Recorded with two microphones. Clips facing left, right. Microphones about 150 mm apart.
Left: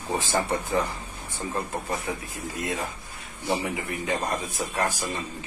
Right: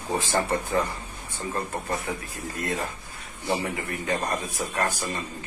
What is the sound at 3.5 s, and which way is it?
Speech, 10° left (ahead or behind).